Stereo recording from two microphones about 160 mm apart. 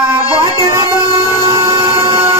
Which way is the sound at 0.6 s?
25° right (ahead or behind).